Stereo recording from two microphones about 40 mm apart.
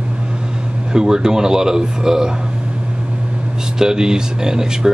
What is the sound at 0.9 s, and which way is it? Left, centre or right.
Speech, centre.